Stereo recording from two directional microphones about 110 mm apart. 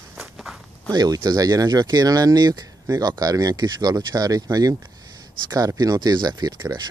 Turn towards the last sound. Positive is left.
turn(degrees=-35)  # may be behind; listen again after turning